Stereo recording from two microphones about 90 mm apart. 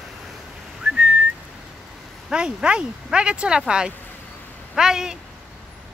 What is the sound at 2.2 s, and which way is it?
Speech, 10° right (ahead or behind).